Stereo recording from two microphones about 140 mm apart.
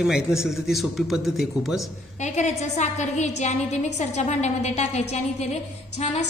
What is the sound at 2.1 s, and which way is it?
A woman's voice, 55° left (ahead or behind).